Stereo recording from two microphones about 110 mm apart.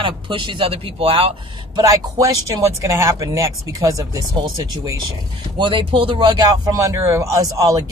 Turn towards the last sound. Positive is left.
turn(degrees=-30)  # may be behind; listen again after turning